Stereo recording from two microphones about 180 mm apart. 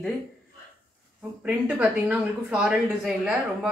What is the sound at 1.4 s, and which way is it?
Speech, 5° right (ahead or behind).